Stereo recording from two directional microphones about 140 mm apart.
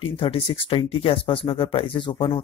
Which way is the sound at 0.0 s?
40° left (ahead or behind).